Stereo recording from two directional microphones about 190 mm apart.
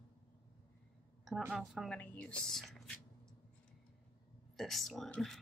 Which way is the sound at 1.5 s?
Centre (ahead or behind).